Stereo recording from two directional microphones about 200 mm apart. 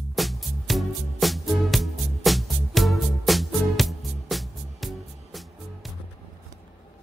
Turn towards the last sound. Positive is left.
turn(degrees=0)  # may be behind; listen again after turning